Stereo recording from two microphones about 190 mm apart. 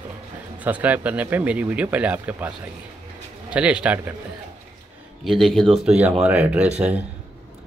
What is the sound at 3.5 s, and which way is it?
Speech, 5° right (ahead or behind).